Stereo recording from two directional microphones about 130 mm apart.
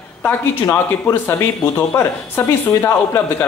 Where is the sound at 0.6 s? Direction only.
20° left (ahead or behind).